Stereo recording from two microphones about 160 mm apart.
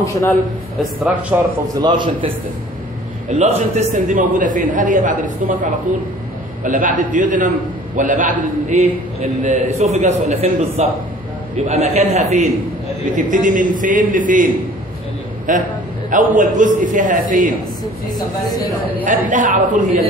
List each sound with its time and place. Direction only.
0.0 s a man's voice: 20° left (ahead or behind)
1.0 s a man's voice: 10° right (ahead or behind)
1.8 s a man's voice: 30° right (ahead or behind)
3.3 s a man's voice: 40° right (ahead or behind)
19.2 s a man's voice: 55° right (ahead or behind)